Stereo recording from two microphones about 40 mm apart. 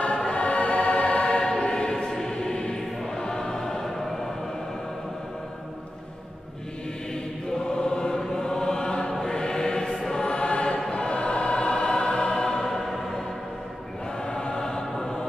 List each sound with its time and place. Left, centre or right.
0.3 s choir: left; by 2.5 s centre
2.5 s music: left
7.5 s choir: left
10.3 s chant: left
10.9 s choir: left; by 13.2 s centre
14.2 s choir: left